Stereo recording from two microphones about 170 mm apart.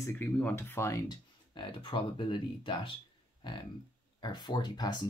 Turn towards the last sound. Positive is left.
turn(degrees=25)  # may be behind; listen again after turning